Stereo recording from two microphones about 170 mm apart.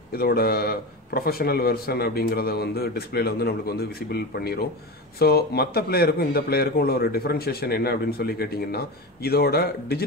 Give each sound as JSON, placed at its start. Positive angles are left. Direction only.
{"t": 0.1, "sound": "a man's voice", "side_deg": 65}